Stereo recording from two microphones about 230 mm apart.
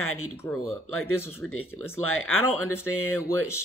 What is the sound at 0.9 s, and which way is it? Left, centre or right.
Speech, left.